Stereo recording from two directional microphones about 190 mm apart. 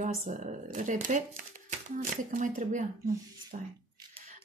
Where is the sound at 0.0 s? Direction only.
40° right (ahead or behind).